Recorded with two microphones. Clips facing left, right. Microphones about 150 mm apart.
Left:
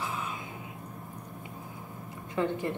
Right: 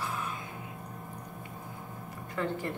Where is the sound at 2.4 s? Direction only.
20° left (ahead or behind).